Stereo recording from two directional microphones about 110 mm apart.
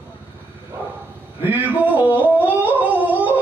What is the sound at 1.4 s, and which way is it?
Speech, 15° right (ahead or behind).